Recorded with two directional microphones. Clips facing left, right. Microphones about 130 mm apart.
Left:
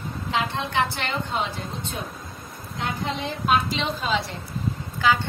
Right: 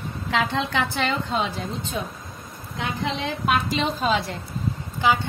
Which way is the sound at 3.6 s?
45° right (ahead or behind).